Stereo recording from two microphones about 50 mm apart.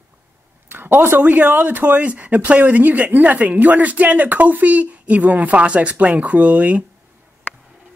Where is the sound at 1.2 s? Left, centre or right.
Right.